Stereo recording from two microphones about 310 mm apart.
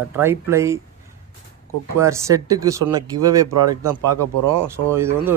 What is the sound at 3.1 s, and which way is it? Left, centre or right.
Speech, right.